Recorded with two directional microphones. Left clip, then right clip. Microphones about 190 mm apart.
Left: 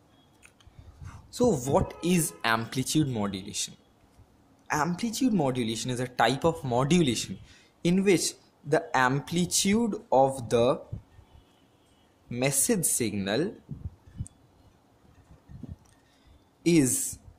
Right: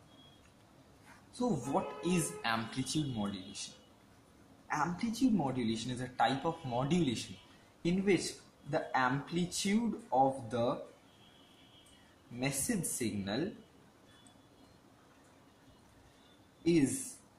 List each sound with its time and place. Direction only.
1.3 s speech: 55° left (ahead or behind)
12.4 s speech: 55° left (ahead or behind)